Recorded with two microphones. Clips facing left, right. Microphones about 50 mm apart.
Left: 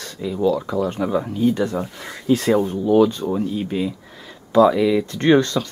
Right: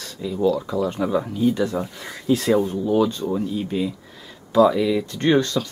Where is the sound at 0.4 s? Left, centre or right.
Centre.